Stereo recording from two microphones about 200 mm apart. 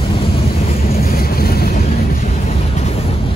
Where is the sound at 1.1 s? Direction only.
50° left (ahead or behind).